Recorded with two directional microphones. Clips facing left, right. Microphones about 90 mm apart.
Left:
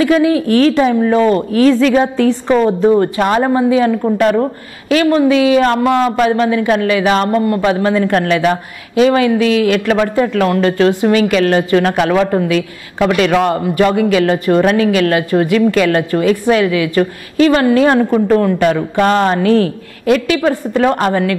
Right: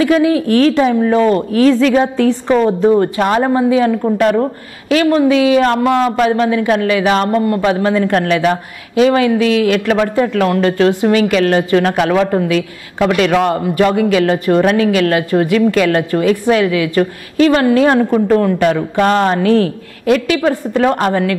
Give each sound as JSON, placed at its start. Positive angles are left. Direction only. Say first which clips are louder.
{"t": 0.0, "sound": "speech", "louder": "even", "side_deg": 15}